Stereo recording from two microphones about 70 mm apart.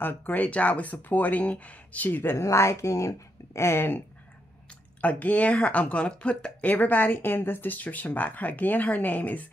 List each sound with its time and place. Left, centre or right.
0.0 s speech: left
2.3 s speech: left
5.0 s speech: left